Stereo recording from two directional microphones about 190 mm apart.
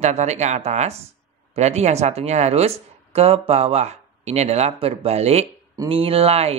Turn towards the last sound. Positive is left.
turn(degrees=-35)  # may be behind; listen again after turning